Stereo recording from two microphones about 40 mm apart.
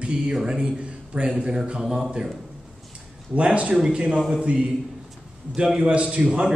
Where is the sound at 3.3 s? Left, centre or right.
Right.